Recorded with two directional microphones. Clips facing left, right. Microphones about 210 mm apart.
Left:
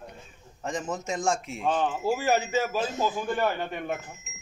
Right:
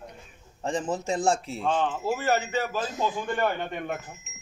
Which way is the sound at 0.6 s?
30° right (ahead or behind).